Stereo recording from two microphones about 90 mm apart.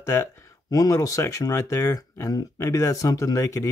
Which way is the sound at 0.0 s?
30° left (ahead or behind).